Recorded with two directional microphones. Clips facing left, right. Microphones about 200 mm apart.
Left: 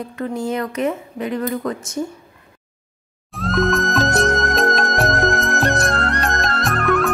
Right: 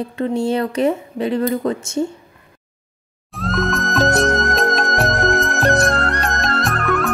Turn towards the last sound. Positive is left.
turn(degrees=0)  # may be behind; listen again after turning